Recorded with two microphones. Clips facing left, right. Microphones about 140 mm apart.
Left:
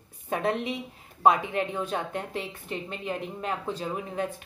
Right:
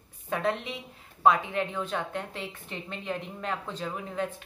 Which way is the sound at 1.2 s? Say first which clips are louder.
Left 1 dB; 20° left (ahead or behind).